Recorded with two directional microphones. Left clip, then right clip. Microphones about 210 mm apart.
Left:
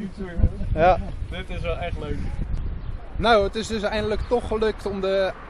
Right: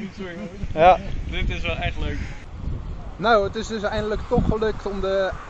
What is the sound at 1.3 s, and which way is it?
Speech, 60° left (ahead or behind).